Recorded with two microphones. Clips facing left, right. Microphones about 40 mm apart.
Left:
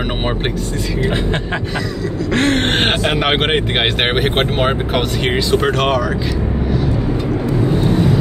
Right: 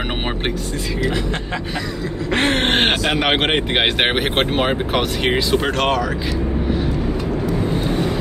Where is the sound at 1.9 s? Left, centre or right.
Right; by 2.9 s centre.